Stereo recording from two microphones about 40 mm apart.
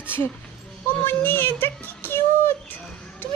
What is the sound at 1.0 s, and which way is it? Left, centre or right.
Speech, left.